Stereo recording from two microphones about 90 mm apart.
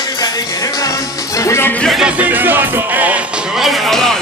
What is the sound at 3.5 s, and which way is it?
Music, centre (ahead or behind).